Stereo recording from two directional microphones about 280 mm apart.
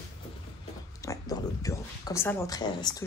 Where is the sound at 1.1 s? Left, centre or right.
Centre.